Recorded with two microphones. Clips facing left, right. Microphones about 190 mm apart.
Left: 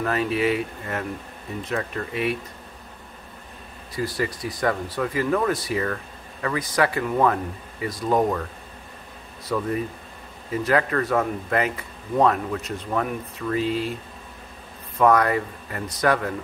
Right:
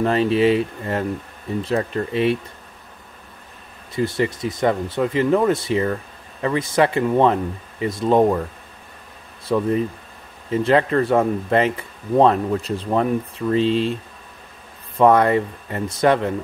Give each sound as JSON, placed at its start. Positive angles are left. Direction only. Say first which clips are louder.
{"t": 0.0, "sound": "speech", "louder": "right 6 dB", "side_deg": -30}
{"t": 3.9, "sound": "speech", "louder": "right 5 dB", "side_deg": -25}
{"t": 9.4, "sound": "speech", "louder": "right 6 dB", "side_deg": -25}
{"t": 15.0, "sound": "speech", "louder": "right 4 dB", "side_deg": -25}